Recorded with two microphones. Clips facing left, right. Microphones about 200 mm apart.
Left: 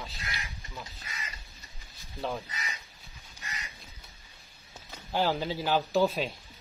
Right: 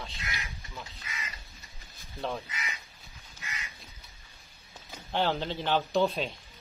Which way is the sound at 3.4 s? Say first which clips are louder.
Even; 35° left (ahead or behind).